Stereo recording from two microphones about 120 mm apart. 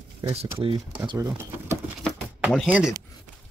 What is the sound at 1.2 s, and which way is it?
Speech, 20° right (ahead or behind).